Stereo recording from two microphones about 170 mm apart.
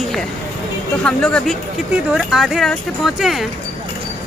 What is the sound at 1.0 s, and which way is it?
Speech, 5° left (ahead or behind).